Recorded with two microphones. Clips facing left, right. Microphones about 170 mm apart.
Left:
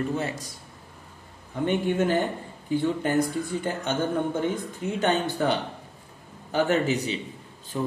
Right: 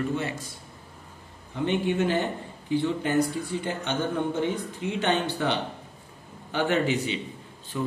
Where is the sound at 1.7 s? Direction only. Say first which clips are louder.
Left 1 dB; 45° left (ahead or behind).